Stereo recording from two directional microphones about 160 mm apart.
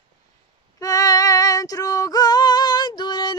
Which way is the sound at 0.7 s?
20° left (ahead or behind).